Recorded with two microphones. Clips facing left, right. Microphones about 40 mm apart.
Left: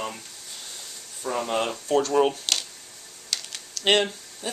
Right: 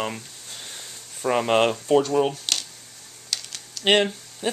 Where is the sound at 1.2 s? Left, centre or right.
Right.